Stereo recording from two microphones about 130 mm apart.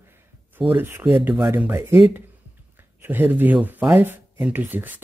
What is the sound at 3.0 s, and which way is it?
Speech, 15° right (ahead or behind).